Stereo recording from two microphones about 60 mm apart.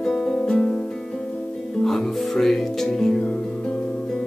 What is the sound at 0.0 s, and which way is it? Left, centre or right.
Music, centre.